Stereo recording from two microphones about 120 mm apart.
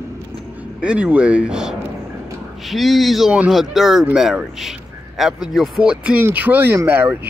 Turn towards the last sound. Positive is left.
turn(degrees=-15)  # may be behind; listen again after turning